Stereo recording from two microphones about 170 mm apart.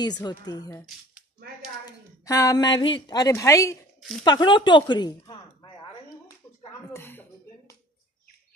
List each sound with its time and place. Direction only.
0.0 s speech: 25° left (ahead or behind)
1.9 s a woman's voice: 20° left (ahead or behind)
6.9 s a sound: 15° left (ahead or behind)